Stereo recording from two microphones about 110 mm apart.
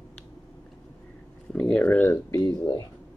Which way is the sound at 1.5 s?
10° left (ahead or behind).